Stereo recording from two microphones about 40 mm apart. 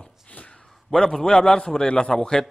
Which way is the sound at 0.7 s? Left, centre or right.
Centre.